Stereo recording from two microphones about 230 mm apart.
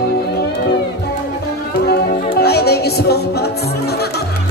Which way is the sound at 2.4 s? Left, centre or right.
Left.